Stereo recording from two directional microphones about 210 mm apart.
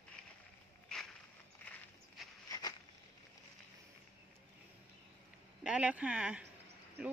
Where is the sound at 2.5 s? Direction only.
20° left (ahead or behind).